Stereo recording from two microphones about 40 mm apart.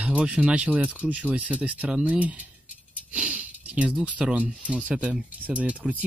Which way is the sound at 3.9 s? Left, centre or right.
Right.